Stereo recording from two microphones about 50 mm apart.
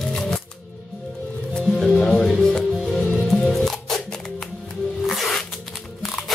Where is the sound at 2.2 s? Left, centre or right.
Centre.